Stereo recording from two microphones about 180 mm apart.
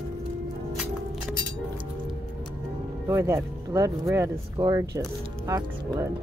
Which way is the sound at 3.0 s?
15° right (ahead or behind).